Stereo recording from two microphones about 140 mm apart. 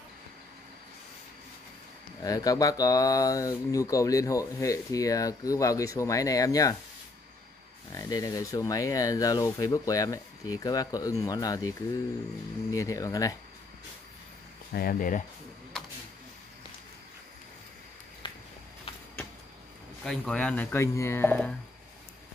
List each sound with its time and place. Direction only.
2.2 s speech: 25° left (ahead or behind)
7.9 s speech: 25° left (ahead or behind)
12.7 s speech: 25° left (ahead or behind)
14.7 s speech: 90° left; by 15.2 s 75° left (ahead or behind)
18.2 s walk: 35° left (ahead or behind)
20.1 s speech: 5° left (ahead or behind)
20.7 s speech: 20° left (ahead or behind)